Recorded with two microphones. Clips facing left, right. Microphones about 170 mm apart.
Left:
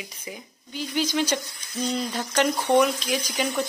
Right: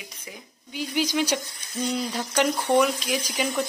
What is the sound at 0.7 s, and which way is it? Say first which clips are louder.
Speech: even; 10° right (ahead or behind).